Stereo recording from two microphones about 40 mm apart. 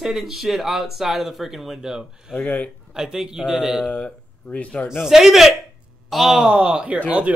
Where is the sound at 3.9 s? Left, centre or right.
Left.